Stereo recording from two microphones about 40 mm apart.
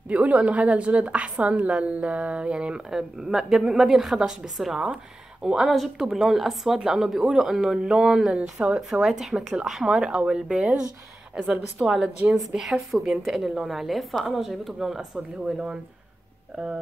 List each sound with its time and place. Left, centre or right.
0.1 s a woman's voice: right
3.0 s a woman's voice: centre
5.4 s a woman's voice: centre
10.1 s a woman's voice: right